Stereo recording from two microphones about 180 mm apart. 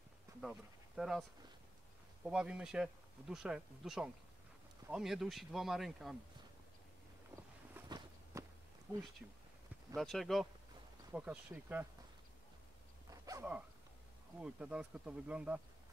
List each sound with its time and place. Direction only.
0.4 s speech: centre (ahead or behind)
2.2 s speech: 5° right (ahead or behind)
7.8 s walk: 10° right (ahead or behind)
8.9 s speech: 10° right (ahead or behind)
9.9 s speech: centre (ahead or behind)
13.1 s dog: 20° right (ahead or behind)
14.4 s speech: 5° right (ahead or behind)